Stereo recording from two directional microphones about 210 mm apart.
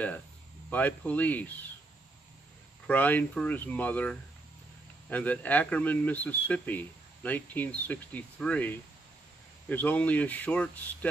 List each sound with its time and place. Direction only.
0.7 s speech: 5° left (ahead or behind)
2.9 s speech: 5° left (ahead or behind)